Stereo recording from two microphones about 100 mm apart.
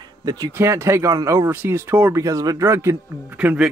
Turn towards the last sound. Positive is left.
turn(degrees=-10)  # may be behind; listen again after turning